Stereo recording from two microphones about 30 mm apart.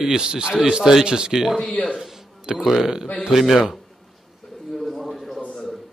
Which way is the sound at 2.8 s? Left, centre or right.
Centre.